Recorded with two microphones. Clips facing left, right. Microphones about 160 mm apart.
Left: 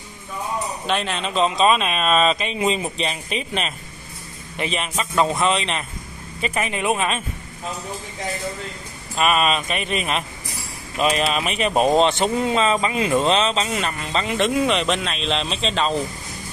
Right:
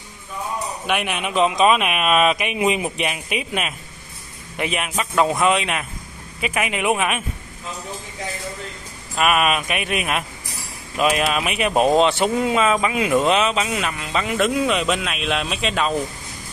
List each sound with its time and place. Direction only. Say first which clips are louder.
0.8 s a man's voice: right 1 dB; 15° right (ahead or behind)
9.1 s a man's voice: right 1 dB; 5° right (ahead or behind)